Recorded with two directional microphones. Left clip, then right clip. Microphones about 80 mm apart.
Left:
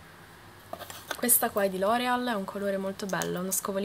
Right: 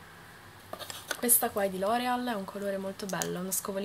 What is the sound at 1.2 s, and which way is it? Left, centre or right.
Speech, left.